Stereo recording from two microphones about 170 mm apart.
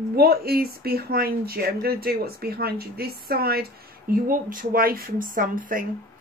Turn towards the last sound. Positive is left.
turn(degrees=-55)  # may be behind; listen again after turning